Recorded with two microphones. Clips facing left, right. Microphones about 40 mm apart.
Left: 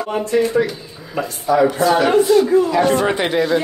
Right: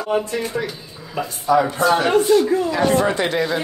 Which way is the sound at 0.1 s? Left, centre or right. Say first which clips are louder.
Left 5 dB; centre.